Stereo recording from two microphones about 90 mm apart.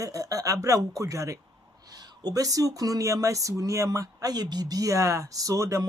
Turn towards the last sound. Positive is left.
turn(degrees=-35)  # may be behind; listen again after turning